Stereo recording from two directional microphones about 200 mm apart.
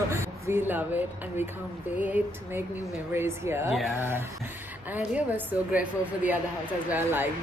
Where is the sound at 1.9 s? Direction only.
5° right (ahead or behind).